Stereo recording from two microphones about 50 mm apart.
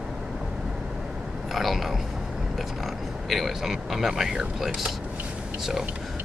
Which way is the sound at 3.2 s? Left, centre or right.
Centre.